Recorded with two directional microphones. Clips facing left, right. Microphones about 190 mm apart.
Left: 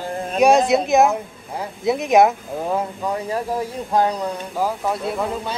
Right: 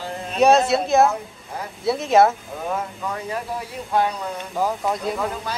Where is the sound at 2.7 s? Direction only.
30° left (ahead or behind).